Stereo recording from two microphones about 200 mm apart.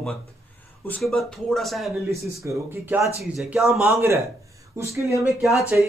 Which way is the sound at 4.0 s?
15° right (ahead or behind).